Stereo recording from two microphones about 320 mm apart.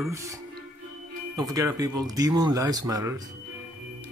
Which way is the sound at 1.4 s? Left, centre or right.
Centre.